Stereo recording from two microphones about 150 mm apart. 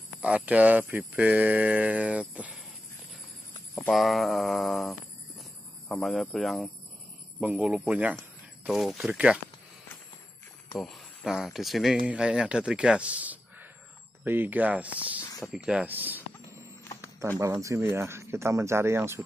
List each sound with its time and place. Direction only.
0.2 s speech: 10° right (ahead or behind)
3.9 s speech: centre (ahead or behind)
5.4 s a sound: centre (ahead or behind)
7.3 s speech: 5° right (ahead or behind)
10.8 s speech: centre (ahead or behind)
15.2 s a sound: 25° left (ahead or behind)
15.5 s speech: 5° right (ahead or behind)
17.4 s speech: 20° right (ahead or behind)